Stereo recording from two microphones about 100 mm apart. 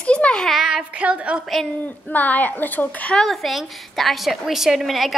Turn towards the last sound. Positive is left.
turn(degrees=0)  # may be behind; listen again after turning